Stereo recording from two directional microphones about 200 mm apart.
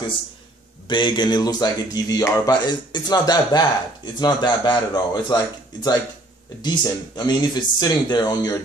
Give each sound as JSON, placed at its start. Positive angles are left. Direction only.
{"t": 0.8, "sound": "speech", "side_deg": 25}
{"t": 6.6, "sound": "speech", "side_deg": 20}